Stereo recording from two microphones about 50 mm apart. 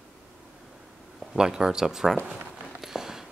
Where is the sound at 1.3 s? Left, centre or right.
Centre.